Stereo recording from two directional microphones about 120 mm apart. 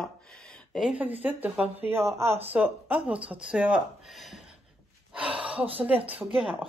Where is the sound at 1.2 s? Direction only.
15° right (ahead or behind).